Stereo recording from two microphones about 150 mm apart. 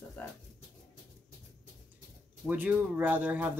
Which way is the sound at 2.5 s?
10° right (ahead or behind).